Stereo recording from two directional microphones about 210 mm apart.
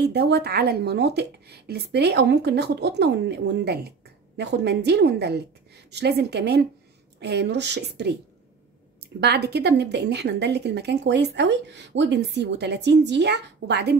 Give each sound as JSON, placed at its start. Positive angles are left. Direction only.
{"t": 0.0, "sound": "a woman's voice", "side_deg": -50}
{"t": 9.2, "sound": "a woman's voice", "side_deg": -50}